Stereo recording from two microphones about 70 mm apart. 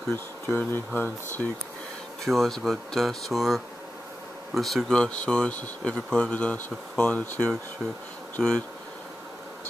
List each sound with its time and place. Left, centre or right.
0.1 s speech: left
2.2 s speech: centre
4.9 s speech: centre
8.4 s speech: centre